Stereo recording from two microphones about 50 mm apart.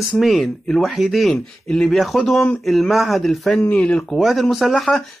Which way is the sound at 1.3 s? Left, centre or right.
Centre.